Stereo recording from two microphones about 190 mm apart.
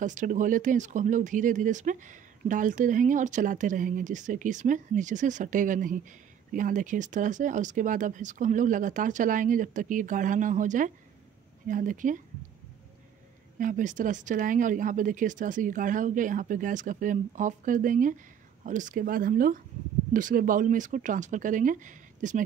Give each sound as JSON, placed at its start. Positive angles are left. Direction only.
{"t": 0.0, "sound": "speech", "side_deg": -40}
{"t": 13.6, "sound": "speech", "side_deg": -45}